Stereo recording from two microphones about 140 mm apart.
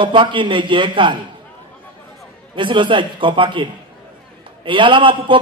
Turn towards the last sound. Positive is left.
turn(degrees=-35)  # may be behind; listen again after turning